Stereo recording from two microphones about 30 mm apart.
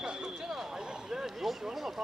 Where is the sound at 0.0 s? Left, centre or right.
Right.